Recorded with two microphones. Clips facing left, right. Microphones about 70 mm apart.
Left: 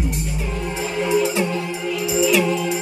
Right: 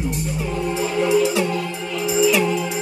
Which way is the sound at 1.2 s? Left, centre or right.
Left.